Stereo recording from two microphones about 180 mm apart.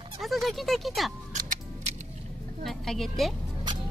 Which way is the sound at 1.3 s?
45° right (ahead or behind).